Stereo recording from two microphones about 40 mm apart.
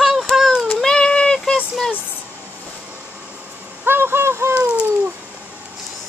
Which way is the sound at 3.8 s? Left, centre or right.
Right.